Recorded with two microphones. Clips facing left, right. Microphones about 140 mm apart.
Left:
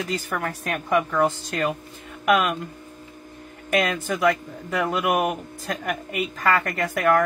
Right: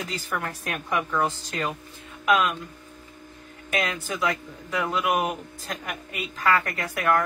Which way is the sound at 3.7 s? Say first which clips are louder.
Left 5 dB; 50° left (ahead or behind).